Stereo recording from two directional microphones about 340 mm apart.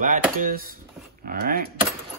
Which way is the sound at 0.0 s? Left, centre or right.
Right.